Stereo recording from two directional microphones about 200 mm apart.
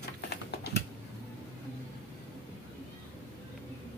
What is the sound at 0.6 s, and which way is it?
Typing, 55° left (ahead or behind).